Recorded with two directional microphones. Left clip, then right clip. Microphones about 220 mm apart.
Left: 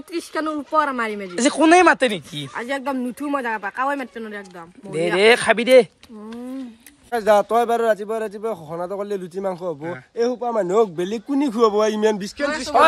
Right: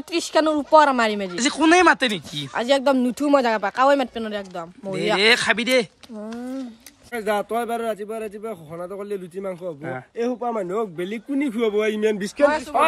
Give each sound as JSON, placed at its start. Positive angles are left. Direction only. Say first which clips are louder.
{"t": 0.3, "sound": "speech", "louder": "right 7 dB", "side_deg": -35}
{"t": 1.3, "sound": "speech", "louder": "left 5 dB", "side_deg": 0}
{"t": 2.5, "sound": "speech", "louder": "right 7 dB", "side_deg": -35}
{"t": 4.9, "sound": "speech", "louder": "left 2 dB", "side_deg": 0}
{"t": 7.1, "sound": "a man's voice", "louder": "left 7 dB", "side_deg": 15}
{"t": 10.7, "sound": "a man's voice", "louder": "left 7 dB", "side_deg": 25}